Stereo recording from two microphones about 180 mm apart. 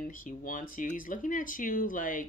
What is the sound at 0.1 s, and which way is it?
Speech, 50° left (ahead or behind).